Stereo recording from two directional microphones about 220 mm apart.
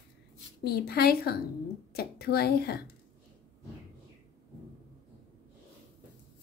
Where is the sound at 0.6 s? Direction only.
45° left (ahead or behind).